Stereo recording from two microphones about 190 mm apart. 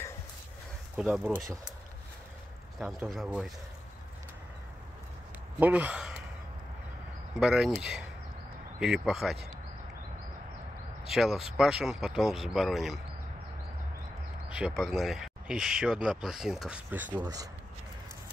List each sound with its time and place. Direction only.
0.9 s speech: 5° right (ahead or behind)
2.8 s speech: centre (ahead or behind)
5.6 s speech: 10° right (ahead or behind)
7.3 s speech: 5° right (ahead or behind)
11.1 s speech: centre (ahead or behind)
14.8 s speech: centre (ahead or behind); by 17.5 s 20° right (ahead or behind)